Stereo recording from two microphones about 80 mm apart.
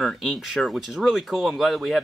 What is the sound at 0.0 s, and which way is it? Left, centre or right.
Speech, centre.